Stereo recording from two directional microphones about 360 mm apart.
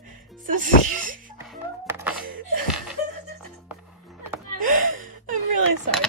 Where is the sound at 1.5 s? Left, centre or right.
Centre.